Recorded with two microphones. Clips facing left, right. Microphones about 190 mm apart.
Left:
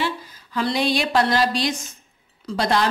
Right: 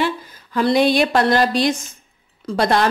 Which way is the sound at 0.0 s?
55° right (ahead or behind).